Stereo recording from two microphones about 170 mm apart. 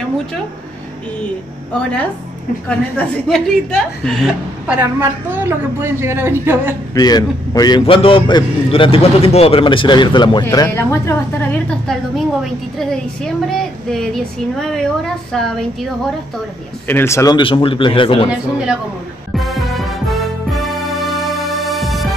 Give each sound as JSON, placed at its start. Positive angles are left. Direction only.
{"t": 1.8, "sound": "a woman's voice", "side_deg": 5}
{"t": 4.7, "sound": "a woman's voice", "side_deg": -15}
{"t": 6.9, "sound": "a man's voice", "side_deg": 25}
{"t": 12.7, "sound": "a woman's voice", "side_deg": 5}
{"t": 16.8, "sound": "a woman's voice", "side_deg": 15}
{"t": 17.4, "sound": "speech", "side_deg": 30}
{"t": 18.3, "sound": "a woman's voice", "side_deg": -5}
{"t": 19.3, "sound": "music", "side_deg": 0}